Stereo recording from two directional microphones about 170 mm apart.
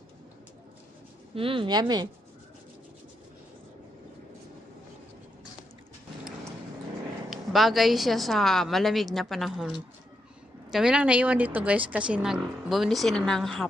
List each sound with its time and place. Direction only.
1.3 s speech: 30° right (ahead or behind)
7.2 s speech: centre (ahead or behind)